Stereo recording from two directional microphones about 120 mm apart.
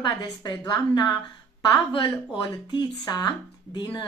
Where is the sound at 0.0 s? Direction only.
35° left (ahead or behind).